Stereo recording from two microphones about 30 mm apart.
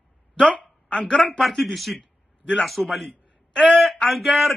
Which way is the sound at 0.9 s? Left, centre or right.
Left.